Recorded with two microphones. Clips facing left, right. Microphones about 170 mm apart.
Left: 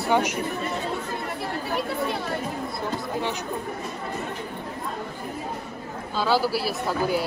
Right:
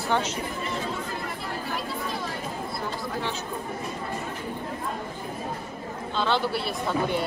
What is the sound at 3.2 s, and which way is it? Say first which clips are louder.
Speech: left 2 dB; 15° left (ahead or behind).